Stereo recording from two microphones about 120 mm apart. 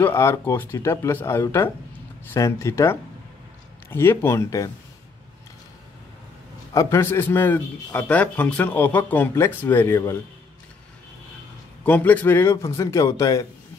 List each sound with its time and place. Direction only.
0.0 s a man's voice: 20° left (ahead or behind)
6.7 s a man's voice: 25° left (ahead or behind)
11.8 s a man's voice: 15° left (ahead or behind)